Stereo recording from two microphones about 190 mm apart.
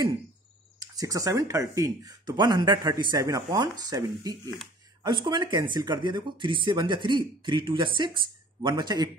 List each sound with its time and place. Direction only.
0.7 s speech: 20° right (ahead or behind)